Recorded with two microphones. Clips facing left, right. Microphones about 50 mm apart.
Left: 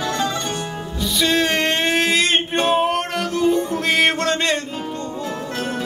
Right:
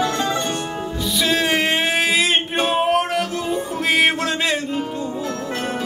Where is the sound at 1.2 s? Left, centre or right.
Centre.